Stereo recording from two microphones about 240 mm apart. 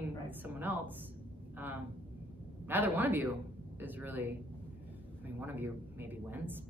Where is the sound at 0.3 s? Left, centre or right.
Centre.